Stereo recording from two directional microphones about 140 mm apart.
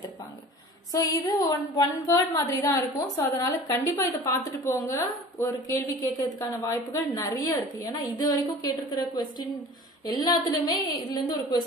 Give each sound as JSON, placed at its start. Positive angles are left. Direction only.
{"t": 0.9, "sound": "a woman's voice", "side_deg": 25}